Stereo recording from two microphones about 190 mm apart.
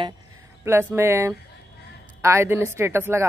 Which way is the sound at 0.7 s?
15° right (ahead or behind).